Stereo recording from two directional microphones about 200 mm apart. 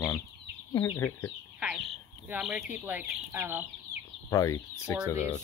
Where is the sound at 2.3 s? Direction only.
5° right (ahead or behind).